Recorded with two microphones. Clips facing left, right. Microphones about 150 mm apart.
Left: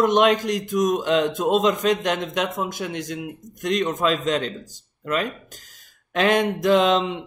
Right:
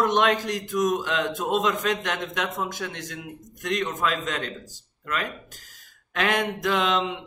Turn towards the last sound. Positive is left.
turn(degrees=25)  # may be behind; listen again after turning